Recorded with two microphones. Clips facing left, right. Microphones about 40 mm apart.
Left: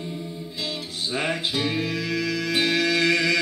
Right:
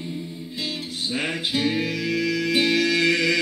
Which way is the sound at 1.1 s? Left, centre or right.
Centre.